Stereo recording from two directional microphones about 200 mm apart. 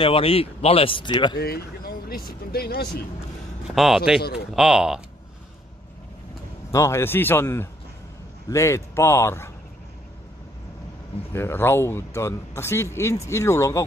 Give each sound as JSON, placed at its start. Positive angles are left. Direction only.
{"t": 0.0, "sound": "speech", "side_deg": 25}
{"t": 1.4, "sound": "speech", "side_deg": 50}
{"t": 3.7, "sound": "speech", "side_deg": 0}
{"t": 6.7, "sound": "speech", "side_deg": 15}
{"t": 11.3, "sound": "speech", "side_deg": 10}